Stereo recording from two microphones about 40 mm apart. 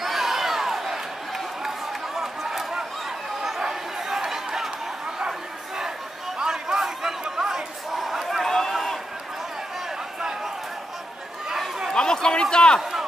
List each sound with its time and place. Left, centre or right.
0.0 s crowd: centre
1.6 s run: centre
3.4 s chatter: centre
6.3 s a sound: centre
8.5 s run: centre
11.9 s a sound: centre